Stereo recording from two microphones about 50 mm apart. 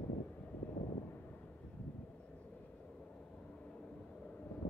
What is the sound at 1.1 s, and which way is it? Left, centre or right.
Vehicle, left.